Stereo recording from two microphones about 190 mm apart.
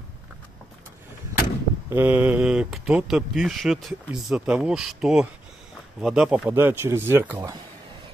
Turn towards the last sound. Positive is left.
turn(degrees=-10)  # may be behind; listen again after turning